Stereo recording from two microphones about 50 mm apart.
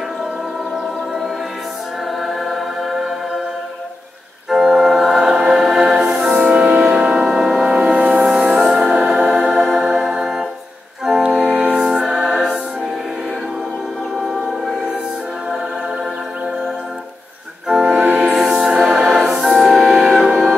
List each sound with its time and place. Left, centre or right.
2.2 s choir: centre
4.5 s music: centre
6.4 s music: right; by 10.4 s centre
11.1 s organ: centre
11.8 s music: centre
14.2 s music: centre
17.6 s organ: centre
18.5 s music: centre